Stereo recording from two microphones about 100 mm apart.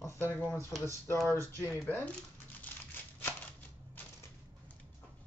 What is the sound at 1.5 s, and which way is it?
Speech, 20° left (ahead or behind).